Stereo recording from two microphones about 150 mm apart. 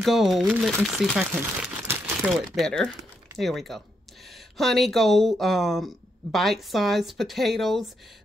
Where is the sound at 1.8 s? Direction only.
15° right (ahead or behind).